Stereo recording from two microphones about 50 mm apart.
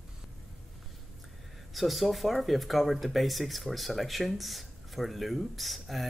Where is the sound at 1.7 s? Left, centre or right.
Centre.